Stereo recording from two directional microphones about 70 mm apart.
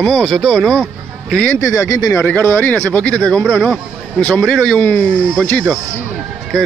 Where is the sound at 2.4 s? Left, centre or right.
Left.